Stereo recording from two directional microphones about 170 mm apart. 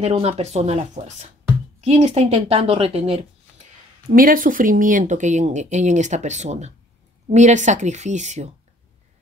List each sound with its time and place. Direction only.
0.0 s a woman's voice: 35° right (ahead or behind)
4.1 s speech: 55° right (ahead or behind)